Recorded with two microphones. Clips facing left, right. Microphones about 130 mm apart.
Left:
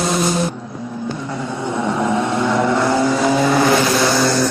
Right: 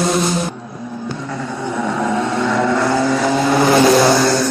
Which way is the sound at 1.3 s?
25° left (ahead or behind).